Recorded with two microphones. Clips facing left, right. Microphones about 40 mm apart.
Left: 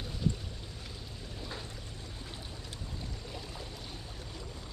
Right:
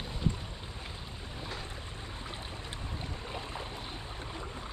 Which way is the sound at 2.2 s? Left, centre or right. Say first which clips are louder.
Right 4 dB; right.